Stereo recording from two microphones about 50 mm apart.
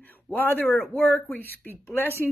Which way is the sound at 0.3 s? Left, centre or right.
Left.